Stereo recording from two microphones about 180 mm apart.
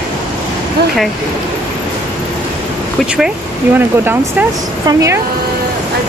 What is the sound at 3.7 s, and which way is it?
Speech, 10° right (ahead or behind).